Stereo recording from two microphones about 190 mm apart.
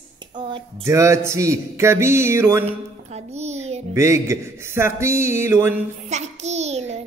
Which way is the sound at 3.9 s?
15° right (ahead or behind).